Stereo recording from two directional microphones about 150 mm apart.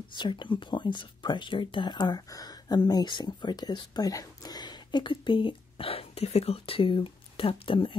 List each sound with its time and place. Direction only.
0.2 s speech: 30° left (ahead or behind)